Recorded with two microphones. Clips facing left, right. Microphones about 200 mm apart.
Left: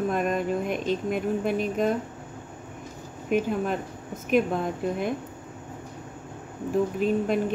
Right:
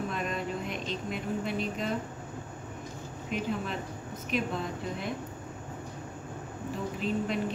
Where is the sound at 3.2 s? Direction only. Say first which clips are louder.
Left 8 dB; 50° left (ahead or behind).